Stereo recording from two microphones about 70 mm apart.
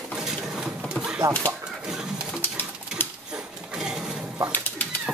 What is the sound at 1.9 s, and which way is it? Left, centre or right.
Pigeon, centre.